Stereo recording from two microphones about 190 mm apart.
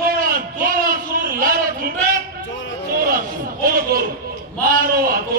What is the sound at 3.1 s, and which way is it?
A man's voice, 50° right (ahead or behind).